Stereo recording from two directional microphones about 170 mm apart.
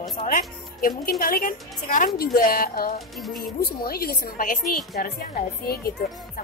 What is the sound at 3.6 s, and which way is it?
Speech, 65° left (ahead or behind).